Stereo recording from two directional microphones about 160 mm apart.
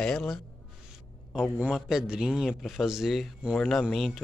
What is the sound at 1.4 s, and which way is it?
A man's voice, centre (ahead or behind).